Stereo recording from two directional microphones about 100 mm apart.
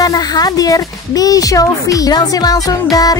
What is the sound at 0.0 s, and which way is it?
Speech, 40° left (ahead or behind).